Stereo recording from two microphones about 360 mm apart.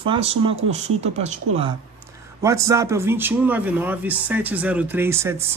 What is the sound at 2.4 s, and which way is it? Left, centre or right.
Speech, centre.